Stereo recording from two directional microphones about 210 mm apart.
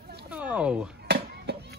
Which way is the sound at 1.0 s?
50° right (ahead or behind).